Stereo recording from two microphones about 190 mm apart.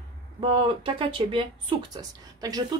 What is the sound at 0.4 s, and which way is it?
Speech, 30° right (ahead or behind).